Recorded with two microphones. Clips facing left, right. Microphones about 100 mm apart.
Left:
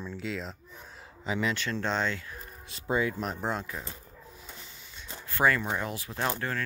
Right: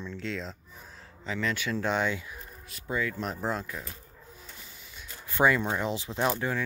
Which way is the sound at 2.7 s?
25° left (ahead or behind).